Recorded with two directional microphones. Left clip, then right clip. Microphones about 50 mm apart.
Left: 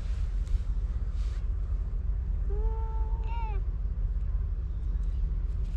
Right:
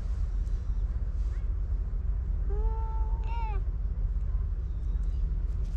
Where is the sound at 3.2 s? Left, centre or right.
Centre.